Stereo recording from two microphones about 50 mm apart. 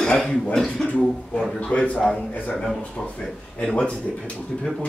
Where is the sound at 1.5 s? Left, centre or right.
Left.